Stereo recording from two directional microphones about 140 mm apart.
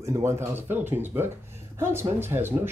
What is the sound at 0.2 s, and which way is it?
Speech, 20° right (ahead or behind).